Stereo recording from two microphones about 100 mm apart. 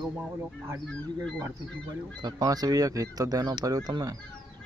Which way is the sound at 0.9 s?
10° left (ahead or behind).